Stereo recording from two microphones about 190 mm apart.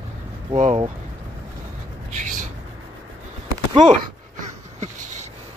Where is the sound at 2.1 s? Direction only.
40° right (ahead or behind).